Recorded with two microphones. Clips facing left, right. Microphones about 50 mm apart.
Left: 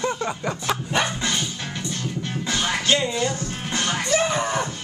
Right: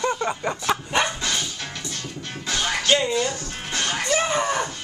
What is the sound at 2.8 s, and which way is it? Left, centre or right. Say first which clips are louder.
Music: right 2 dB; centre.